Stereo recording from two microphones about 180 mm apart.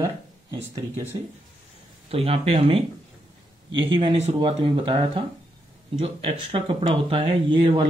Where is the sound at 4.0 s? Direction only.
30° right (ahead or behind).